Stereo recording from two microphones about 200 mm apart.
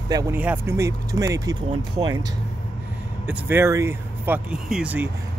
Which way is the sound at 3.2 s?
10° right (ahead or behind).